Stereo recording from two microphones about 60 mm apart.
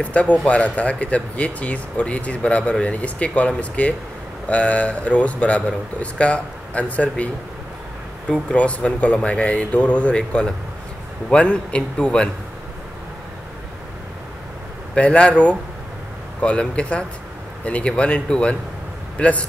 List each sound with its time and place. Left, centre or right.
0.0 s speech: left
8.5 s a man's voice: left
15.0 s a man's voice: centre